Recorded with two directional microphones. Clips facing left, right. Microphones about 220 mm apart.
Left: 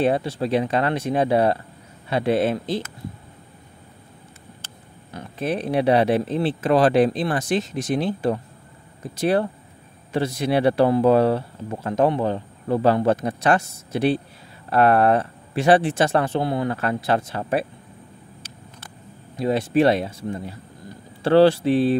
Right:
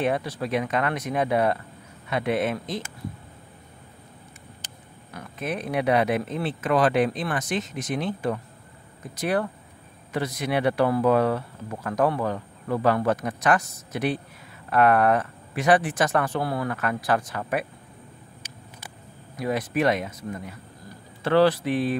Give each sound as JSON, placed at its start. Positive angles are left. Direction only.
{"t": 0.0, "sound": "speech", "side_deg": 30}
{"t": 5.1, "sound": "speech", "side_deg": 30}
{"t": 19.3, "sound": "speech", "side_deg": 25}